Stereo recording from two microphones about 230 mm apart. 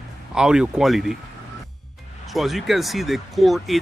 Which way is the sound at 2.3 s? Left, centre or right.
Centre.